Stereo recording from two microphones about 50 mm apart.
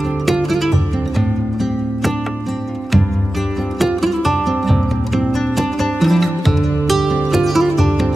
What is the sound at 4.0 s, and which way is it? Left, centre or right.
Music, centre.